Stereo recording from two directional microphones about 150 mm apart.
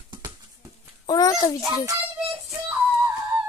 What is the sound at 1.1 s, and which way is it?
Speech, 25° left (ahead or behind).